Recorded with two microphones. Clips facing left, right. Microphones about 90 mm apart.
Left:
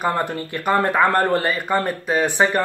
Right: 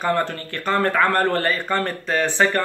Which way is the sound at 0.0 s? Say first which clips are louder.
Even; 15° left (ahead or behind).